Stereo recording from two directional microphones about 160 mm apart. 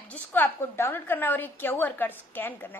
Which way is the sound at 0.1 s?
10° left (ahead or behind).